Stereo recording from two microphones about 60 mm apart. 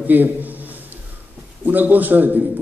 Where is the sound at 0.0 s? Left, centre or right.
Right.